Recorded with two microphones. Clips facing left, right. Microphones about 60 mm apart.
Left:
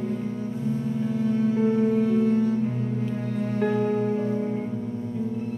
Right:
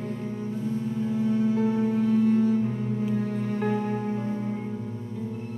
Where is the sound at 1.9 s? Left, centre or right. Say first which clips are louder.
Left 1 dB; centre.